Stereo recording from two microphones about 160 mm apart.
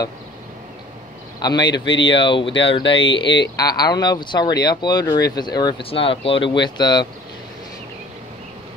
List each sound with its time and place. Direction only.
1.4 s speech: 25° left (ahead or behind)